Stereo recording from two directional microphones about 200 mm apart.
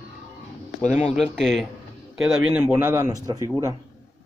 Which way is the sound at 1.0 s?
5° left (ahead or behind).